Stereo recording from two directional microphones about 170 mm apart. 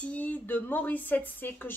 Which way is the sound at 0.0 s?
10° left (ahead or behind).